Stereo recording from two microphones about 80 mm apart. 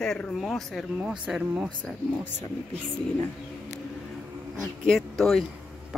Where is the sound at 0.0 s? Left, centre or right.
Centre.